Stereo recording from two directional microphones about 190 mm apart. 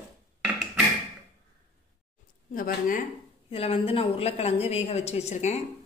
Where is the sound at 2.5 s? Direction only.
50° left (ahead or behind).